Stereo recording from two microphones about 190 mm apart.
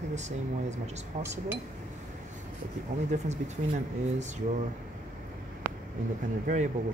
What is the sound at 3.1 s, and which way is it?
Speech, 40° right (ahead or behind).